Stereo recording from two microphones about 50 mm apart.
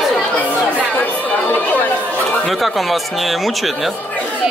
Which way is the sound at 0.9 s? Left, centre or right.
Left.